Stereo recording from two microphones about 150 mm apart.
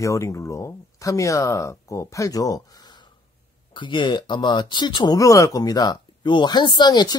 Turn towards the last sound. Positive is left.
turn(degrees=30)  # may be behind; listen again after turning